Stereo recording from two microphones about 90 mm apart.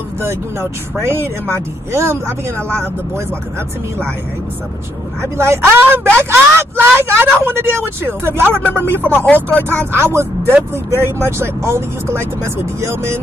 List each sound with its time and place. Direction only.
0.2 s speech: 30° right (ahead or behind)
5.2 s speech: 30° right (ahead or behind)
9.0 s speech: 20° left (ahead or behind)
9.9 s speech: 30° right (ahead or behind)